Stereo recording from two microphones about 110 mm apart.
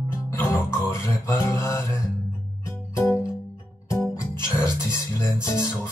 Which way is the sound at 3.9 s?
30° left (ahead or behind).